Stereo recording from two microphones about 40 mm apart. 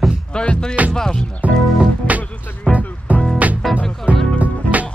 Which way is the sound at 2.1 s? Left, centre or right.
Right.